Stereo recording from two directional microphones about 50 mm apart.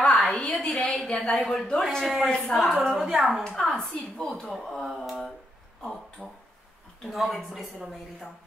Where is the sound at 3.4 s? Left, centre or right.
Centre.